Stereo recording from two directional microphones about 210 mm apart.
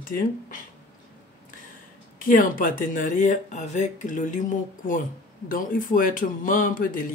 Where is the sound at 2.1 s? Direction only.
40° left (ahead or behind).